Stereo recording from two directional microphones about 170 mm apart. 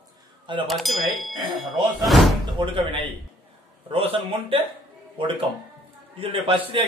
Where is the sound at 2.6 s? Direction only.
30° right (ahead or behind).